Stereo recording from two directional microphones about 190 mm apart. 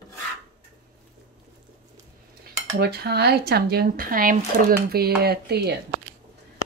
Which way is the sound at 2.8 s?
55° right (ahead or behind).